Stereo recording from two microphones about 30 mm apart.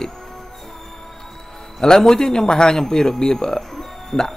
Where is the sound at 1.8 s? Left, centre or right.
Centre.